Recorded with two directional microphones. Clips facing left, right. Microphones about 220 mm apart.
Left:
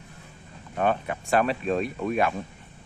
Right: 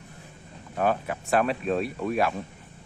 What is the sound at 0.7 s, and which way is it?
Speech, centre (ahead or behind).